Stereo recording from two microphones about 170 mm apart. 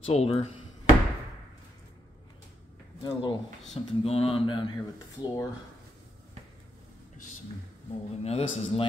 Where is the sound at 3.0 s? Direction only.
25° left (ahead or behind).